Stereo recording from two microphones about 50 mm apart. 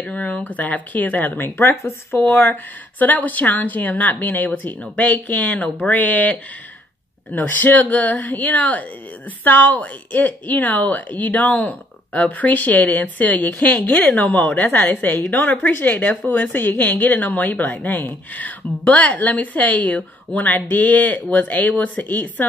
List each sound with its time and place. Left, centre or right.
0.0 s a woman's voice: left
1.6 s speech: left
2.1 s a woman's voice: left
7.3 s a woman's voice: left